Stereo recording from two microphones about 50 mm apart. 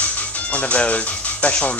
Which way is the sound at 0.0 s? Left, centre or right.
Left.